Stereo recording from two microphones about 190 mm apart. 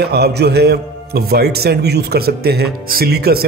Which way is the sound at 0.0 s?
60° right (ahead or behind).